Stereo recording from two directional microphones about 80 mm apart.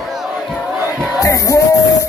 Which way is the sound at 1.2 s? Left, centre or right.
Left.